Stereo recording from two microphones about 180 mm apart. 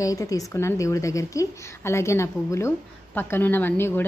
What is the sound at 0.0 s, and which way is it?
A woman's voice, 20° left (ahead or behind).